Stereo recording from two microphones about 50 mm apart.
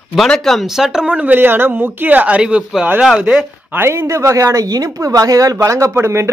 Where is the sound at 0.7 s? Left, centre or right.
Centre.